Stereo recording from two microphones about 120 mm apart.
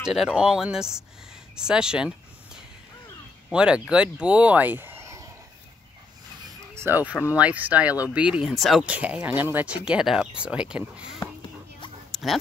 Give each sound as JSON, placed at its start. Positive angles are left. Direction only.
{"t": 0.0, "sound": "speech", "side_deg": -5}
{"t": 6.7, "sound": "speech", "side_deg": -20}
{"t": 8.8, "sound": "speech", "side_deg": -10}
{"t": 12.1, "sound": "dog", "side_deg": 0}